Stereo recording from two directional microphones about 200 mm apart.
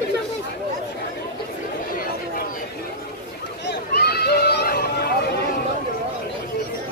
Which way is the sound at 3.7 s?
55° left (ahead or behind).